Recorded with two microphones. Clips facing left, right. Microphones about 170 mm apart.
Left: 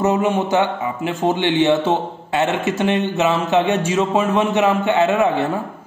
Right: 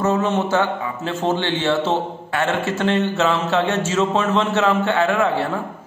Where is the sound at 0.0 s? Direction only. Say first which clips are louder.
Left 2 dB; 15° left (ahead or behind).